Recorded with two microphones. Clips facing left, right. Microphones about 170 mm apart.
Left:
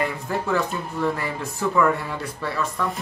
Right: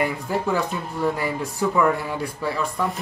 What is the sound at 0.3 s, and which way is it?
Speech, 10° right (ahead or behind).